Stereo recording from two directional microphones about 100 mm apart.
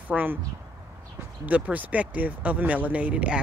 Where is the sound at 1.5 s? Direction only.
15° right (ahead or behind).